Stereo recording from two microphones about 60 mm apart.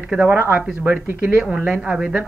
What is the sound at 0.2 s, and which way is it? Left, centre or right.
Speech, right.